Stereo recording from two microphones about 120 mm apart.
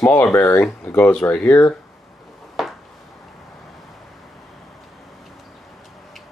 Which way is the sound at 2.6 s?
Centre (ahead or behind).